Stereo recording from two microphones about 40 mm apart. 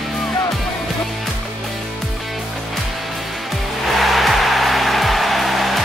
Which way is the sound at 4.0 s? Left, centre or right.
Centre.